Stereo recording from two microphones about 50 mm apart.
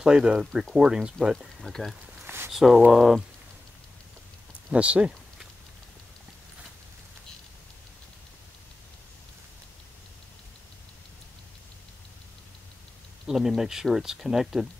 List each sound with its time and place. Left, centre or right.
0.0 s speech: centre
1.7 s speech: centre
2.2 s a sound: right
2.5 s speech: centre
4.6 s speech: right
13.3 s speech: centre